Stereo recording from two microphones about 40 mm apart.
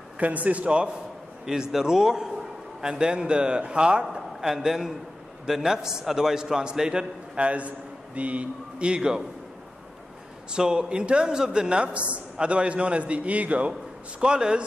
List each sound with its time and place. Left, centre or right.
0.2 s speech: right
1.4 s a man's voice: centre
4.0 s a man's voice: centre
7.3 s a man's voice: right
10.5 s a man's voice: right
14.2 s a man's voice: right